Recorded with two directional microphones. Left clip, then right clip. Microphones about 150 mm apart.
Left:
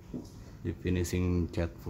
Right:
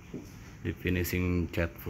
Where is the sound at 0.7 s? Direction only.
Centre (ahead or behind).